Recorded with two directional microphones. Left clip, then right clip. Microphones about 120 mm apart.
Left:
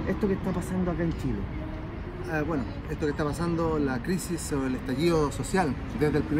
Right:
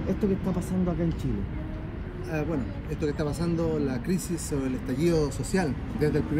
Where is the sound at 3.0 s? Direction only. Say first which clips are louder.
Left 1 dB; 5° right (ahead or behind).